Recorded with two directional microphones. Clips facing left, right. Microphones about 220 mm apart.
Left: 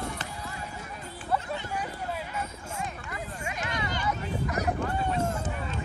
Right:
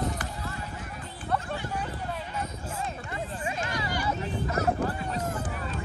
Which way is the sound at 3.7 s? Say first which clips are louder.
Right 1 dB; 20° left (ahead or behind).